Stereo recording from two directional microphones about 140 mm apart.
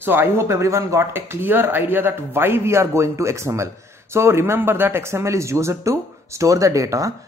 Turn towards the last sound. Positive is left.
turn(degrees=-25)  # may be behind; listen again after turning